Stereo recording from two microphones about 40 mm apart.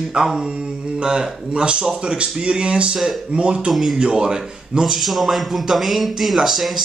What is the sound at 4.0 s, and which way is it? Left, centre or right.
Speech, right.